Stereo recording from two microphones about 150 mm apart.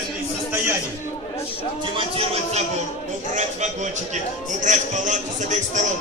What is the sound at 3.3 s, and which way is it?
A man's voice, 55° right (ahead or behind).